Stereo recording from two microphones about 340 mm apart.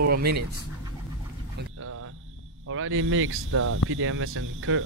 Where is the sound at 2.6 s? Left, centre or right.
Right.